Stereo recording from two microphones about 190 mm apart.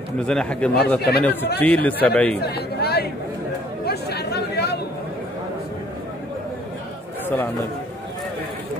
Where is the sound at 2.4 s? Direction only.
55° left (ahead or behind).